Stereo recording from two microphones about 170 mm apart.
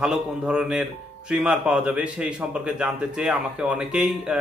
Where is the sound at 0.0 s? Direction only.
5° right (ahead or behind).